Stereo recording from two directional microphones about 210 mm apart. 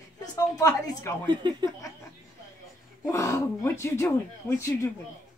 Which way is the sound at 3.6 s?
10° left (ahead or behind).